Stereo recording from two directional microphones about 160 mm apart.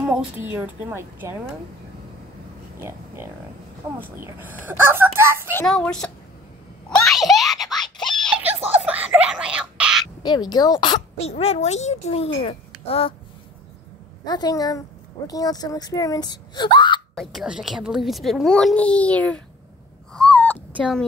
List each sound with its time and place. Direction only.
0.0 s speech: 10° right (ahead or behind)
4.0 s speech: 10° right (ahead or behind)
5.7 s speech: 5° left (ahead or behind)
6.9 s a sound: centre (ahead or behind)
8.8 s a sound: 10° right (ahead or behind)
10.2 s speech: 25° left (ahead or behind)
11.1 s a child's voice: 40° left (ahead or behind)
14.2 s speech: 25° left (ahead or behind)
17.1 s speech: centre (ahead or behind)
20.1 s caw: 5° left (ahead or behind)